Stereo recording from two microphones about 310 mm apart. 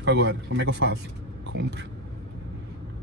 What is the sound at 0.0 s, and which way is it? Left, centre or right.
A man's voice, right.